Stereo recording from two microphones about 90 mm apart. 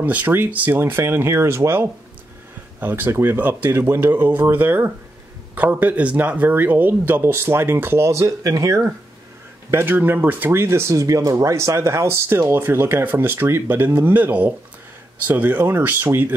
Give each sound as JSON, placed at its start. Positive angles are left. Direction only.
{"t": 0.0, "sound": "speech", "side_deg": -20}
{"t": 9.7, "sound": "speech", "side_deg": -25}